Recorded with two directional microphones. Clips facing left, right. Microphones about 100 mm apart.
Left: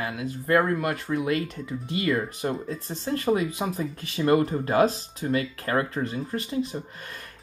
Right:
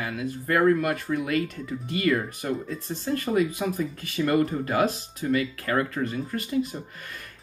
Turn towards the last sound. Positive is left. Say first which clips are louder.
# even
turn(degrees=30)  # may be behind; listen again after turning